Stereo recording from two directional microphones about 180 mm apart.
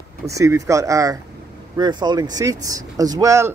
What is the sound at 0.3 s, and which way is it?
Speech, 20° right (ahead or behind).